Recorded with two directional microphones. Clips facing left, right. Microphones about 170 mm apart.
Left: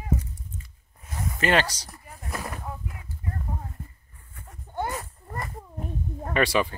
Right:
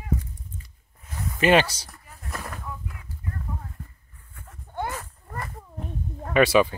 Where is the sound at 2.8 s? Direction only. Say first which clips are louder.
Left 1 dB; 25° left (ahead or behind).